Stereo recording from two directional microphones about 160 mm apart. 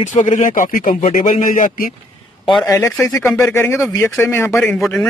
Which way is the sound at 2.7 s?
20° left (ahead or behind).